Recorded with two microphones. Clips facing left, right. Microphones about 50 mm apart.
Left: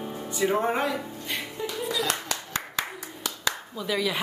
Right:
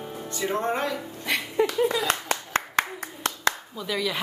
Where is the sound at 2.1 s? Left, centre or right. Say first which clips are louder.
Right 5 dB; right.